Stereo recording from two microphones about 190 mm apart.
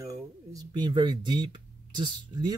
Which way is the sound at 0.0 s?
15° right (ahead or behind).